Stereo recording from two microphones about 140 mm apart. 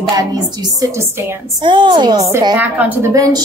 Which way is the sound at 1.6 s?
35° right (ahead or behind).